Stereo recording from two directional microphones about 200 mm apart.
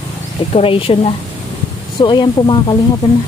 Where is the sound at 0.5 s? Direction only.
30° left (ahead or behind).